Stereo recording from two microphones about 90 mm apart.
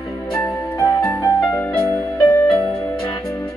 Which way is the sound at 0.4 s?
35° left (ahead or behind).